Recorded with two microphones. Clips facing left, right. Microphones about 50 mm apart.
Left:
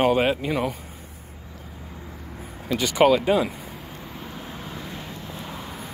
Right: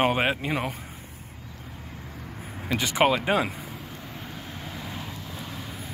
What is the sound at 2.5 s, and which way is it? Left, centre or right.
Vehicle, right.